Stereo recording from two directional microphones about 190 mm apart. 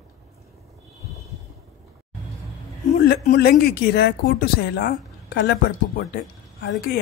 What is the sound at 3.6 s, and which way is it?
A woman's voice, 55° left (ahead or behind).